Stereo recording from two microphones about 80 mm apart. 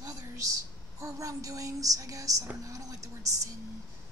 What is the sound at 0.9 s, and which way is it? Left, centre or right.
A woman's voice, right.